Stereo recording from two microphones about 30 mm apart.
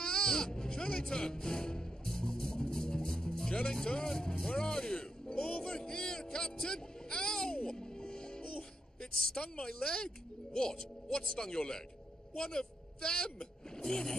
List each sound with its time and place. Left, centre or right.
0.0 s music: left
3.6 s a woman's voice: left
4.5 s music: left
5.8 s a sound: left
7.5 s music: left
9.0 s a woman's voice: left